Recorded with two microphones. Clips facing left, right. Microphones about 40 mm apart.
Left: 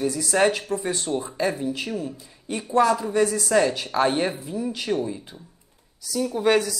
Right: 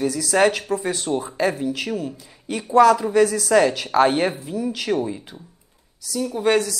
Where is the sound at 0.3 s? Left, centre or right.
Right.